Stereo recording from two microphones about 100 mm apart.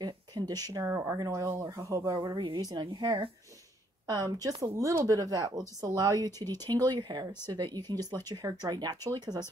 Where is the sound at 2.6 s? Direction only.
40° right (ahead or behind).